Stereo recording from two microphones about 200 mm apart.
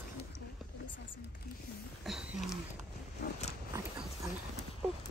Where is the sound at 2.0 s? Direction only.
5° right (ahead or behind).